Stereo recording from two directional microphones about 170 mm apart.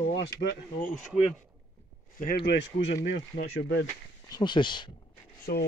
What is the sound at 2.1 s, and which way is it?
Speech, 60° left (ahead or behind).